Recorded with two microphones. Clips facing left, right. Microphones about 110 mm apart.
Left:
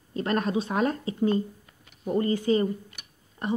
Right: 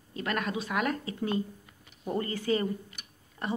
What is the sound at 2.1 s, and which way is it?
A woman's voice, 20° left (ahead or behind).